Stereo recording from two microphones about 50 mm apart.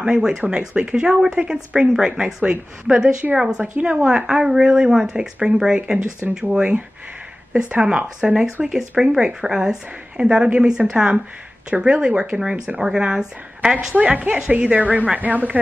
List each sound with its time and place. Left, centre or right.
0.0 s speech: centre
13.9 s a woman's voice: right